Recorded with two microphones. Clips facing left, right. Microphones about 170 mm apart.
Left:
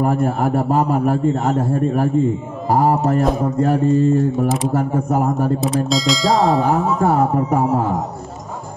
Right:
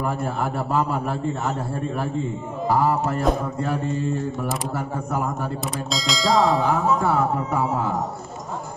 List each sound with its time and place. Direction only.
0.0 s a man's voice: 45° left (ahead or behind)
5.9 s bell: centre (ahead or behind)
6.6 s a man's voice: 50° left (ahead or behind)